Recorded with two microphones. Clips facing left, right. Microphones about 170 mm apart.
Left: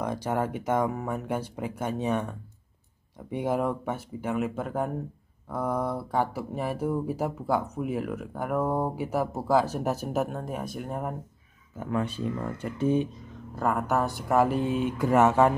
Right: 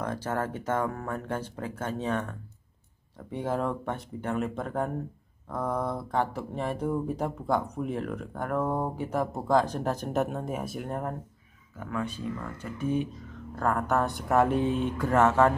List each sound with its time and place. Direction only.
0.0 s speech: 15° left (ahead or behind)
11.8 s speech: 30° left (ahead or behind)
13.6 s speech: 5° left (ahead or behind)